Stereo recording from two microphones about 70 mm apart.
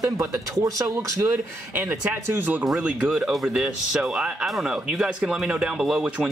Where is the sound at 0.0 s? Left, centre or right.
Right.